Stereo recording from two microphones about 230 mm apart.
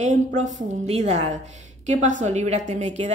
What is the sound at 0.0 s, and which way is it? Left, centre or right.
A woman's voice, right.